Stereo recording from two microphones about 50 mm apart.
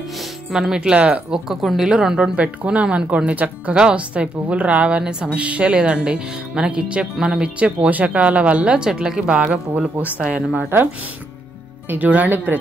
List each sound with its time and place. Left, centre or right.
0.5 s speech: centre
0.9 s a woman's voice: right
1.3 s speech: centre
1.9 s speech: centre
2.3 s a woman's voice: right
11.9 s speech: right